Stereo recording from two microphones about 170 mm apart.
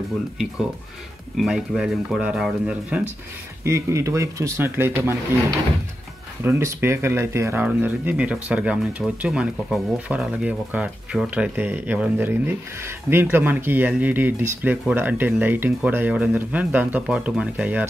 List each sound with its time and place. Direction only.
1.3 s speech: centre (ahead or behind)
6.4 s speech: 15° right (ahead or behind)